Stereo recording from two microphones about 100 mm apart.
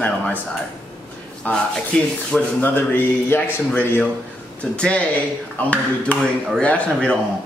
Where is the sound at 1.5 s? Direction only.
5° left (ahead or behind).